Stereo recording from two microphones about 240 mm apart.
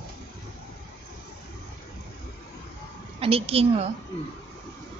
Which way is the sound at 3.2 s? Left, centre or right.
Right.